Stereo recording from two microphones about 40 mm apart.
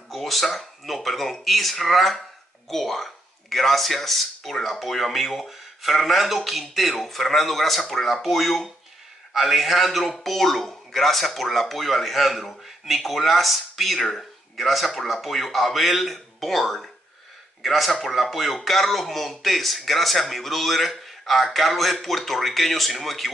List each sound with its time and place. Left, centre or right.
0.1 s speech: centre